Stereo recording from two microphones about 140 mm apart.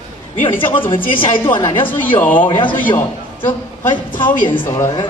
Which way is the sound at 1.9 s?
15° left (ahead or behind).